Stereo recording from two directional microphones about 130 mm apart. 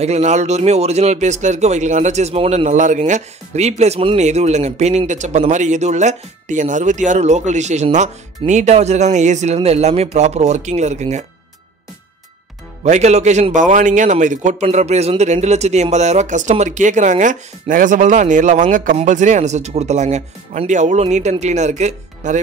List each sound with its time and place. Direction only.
0.0 s speech: 60° right (ahead or behind)
2.6 s speech: 70° right (ahead or behind); by 4.2 s 50° right (ahead or behind)
4.2 s speech: 60° right (ahead or behind)
12.8 s a man's voice: 60° right (ahead or behind)